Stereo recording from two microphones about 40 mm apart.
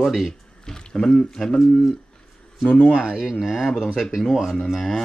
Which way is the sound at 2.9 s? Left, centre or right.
Centre.